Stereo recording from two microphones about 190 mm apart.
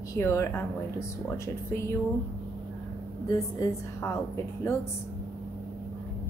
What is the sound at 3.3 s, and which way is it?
Speech, 15° left (ahead or behind).